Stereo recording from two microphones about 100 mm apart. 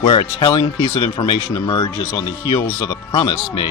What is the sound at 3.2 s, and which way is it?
Speech, 50° left (ahead or behind).